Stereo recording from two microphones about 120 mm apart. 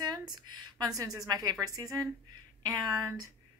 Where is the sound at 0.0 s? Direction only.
35° right (ahead or behind).